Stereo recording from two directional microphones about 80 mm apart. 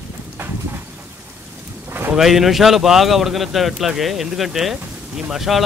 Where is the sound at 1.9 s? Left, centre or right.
Right.